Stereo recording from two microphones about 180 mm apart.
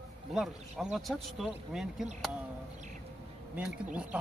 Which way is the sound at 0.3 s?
Centre (ahead or behind).